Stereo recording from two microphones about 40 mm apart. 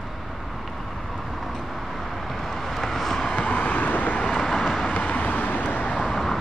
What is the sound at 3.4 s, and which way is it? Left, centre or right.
Vehicle, left.